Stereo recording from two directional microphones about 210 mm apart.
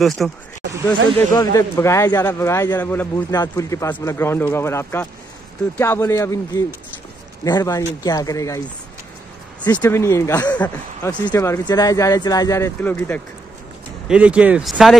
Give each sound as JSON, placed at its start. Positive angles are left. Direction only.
{"t": 0.2, "sound": "speech", "side_deg": 0}
{"t": 1.3, "sound": "speech", "side_deg": 20}
{"t": 9.7, "sound": "speech", "side_deg": 15}
{"t": 14.0, "sound": "speech", "side_deg": -5}